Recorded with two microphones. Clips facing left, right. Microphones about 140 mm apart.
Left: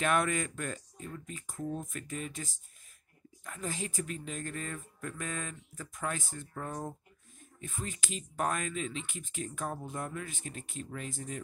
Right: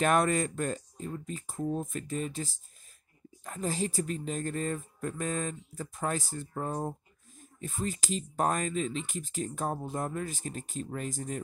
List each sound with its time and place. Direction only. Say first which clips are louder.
0.0 s speech: right 4 dB; 40° right (ahead or behind)